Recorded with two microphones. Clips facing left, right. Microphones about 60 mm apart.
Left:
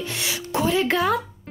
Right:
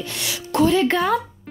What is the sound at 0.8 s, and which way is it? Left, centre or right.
Speech, centre.